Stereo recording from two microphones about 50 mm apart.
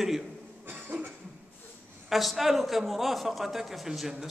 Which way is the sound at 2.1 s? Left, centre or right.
Centre.